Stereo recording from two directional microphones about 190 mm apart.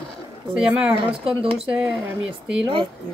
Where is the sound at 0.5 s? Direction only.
5° right (ahead or behind).